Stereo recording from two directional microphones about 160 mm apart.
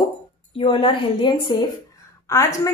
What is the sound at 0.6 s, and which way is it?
A woman's voice, 30° left (ahead or behind).